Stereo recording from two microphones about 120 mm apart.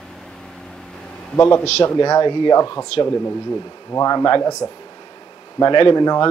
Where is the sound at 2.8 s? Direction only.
25° left (ahead or behind).